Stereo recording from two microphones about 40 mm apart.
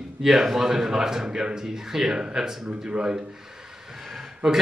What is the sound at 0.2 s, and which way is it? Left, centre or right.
Speech, centre.